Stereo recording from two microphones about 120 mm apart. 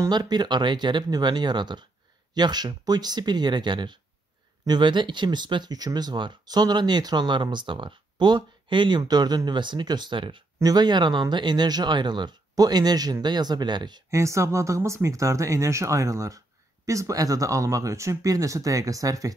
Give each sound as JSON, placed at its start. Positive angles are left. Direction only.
{"t": 0.1, "sound": "speech", "side_deg": -35}
{"t": 14.1, "sound": "speech", "side_deg": -25}